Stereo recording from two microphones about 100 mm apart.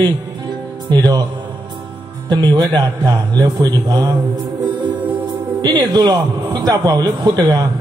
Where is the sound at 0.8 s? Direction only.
40° right (ahead or behind).